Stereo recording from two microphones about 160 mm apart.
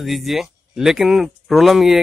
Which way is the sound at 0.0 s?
Centre (ahead or behind).